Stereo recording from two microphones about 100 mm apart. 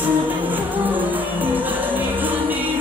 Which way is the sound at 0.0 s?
15° right (ahead or behind).